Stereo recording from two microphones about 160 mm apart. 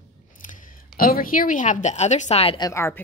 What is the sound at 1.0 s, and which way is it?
Speech, 65° left (ahead or behind).